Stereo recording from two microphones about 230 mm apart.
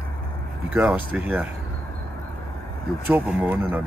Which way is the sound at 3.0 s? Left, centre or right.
Centre.